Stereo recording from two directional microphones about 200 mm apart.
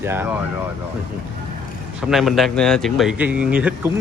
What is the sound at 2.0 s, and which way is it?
A man's voice, centre (ahead or behind).